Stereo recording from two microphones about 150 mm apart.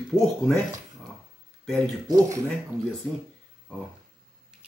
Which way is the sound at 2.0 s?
20° right (ahead or behind).